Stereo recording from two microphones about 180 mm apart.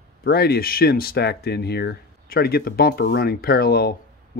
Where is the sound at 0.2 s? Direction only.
60° left (ahead or behind).